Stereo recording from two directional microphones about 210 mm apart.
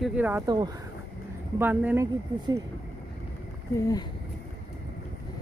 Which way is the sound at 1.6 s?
10° right (ahead or behind).